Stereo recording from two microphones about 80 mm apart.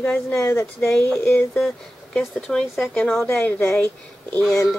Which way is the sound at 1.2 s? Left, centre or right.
Left.